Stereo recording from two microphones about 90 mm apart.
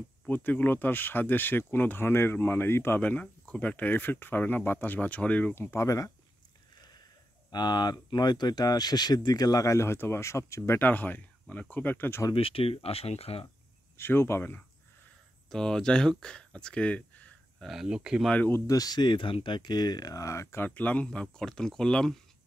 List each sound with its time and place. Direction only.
0.3 s speech: 20° left (ahead or behind)
5.5 s speech: 25° left (ahead or behind)
7.5 s speech: 55° left (ahead or behind); by 12.2 s 20° left (ahead or behind)
12.4 s speech: 90° left
13.9 s speech: 25° left (ahead or behind)
15.5 s speech: 5° left (ahead or behind)
17.6 s speech: 5° right (ahead or behind)
18.5 s speech: 40° left (ahead or behind)
20.6 s speech: 15° left (ahead or behind)